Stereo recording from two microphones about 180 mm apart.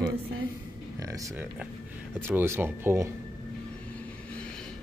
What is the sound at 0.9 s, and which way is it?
Speech, 20° right (ahead or behind).